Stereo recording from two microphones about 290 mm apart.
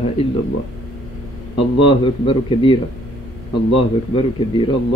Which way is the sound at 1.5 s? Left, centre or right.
Centre.